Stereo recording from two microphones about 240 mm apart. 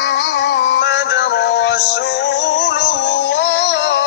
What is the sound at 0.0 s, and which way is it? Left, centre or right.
Music, left.